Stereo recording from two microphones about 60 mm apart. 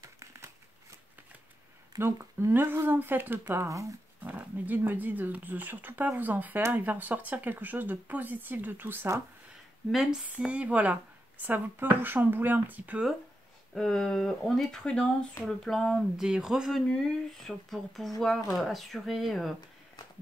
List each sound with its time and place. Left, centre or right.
0.0 s crumpling: right
2.0 s speech: right
3.6 s speech: right
4.2 s speech: right
10.2 s speech: right
13.7 s speech: centre
16.2 s speech: centre
16.9 s speech: centre